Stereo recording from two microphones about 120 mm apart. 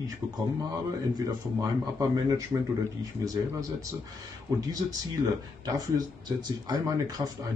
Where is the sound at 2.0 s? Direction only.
30° right (ahead or behind).